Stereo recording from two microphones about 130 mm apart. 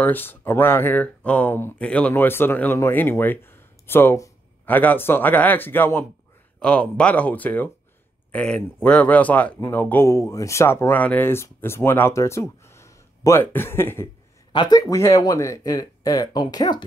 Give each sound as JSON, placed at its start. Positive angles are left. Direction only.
{"t": 0.0, "sound": "speech", "side_deg": 15}
{"t": 14.5, "sound": "speech", "side_deg": 35}